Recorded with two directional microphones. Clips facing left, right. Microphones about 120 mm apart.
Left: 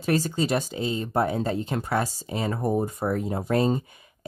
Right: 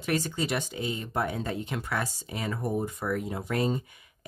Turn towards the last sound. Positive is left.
turn(degrees=35)  # may be behind; listen again after turning